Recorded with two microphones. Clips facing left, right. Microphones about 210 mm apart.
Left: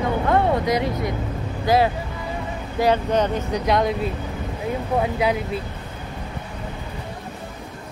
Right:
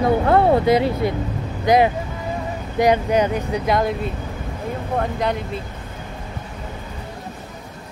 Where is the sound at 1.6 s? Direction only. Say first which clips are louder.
Right 3 dB; 20° right (ahead or behind); by 5.4 s 5° left (ahead or behind).